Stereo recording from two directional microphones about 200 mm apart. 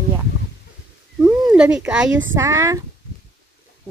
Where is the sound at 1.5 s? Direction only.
5° right (ahead or behind).